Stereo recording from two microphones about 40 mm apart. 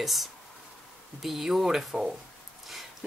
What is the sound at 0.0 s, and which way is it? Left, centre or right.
Speech, centre.